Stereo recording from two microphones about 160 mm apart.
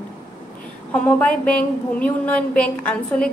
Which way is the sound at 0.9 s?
10° left (ahead or behind).